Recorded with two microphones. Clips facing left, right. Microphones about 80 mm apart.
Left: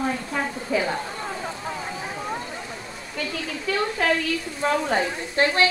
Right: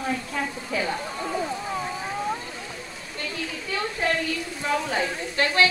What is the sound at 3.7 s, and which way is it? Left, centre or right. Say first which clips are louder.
Speech: left 6 dB; left.